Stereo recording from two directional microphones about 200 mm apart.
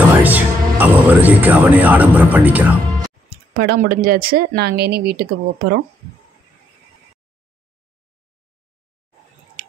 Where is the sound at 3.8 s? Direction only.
45° right (ahead or behind).